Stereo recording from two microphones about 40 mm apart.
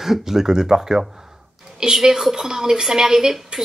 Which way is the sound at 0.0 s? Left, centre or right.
Centre.